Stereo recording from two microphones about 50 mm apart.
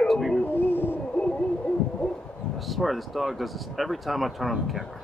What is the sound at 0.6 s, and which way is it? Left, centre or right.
Owl, left.